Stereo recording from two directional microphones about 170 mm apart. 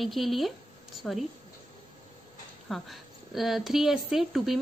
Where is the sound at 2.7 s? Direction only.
Centre (ahead or behind).